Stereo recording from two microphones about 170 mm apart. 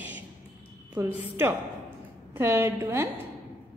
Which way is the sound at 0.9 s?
10° right (ahead or behind).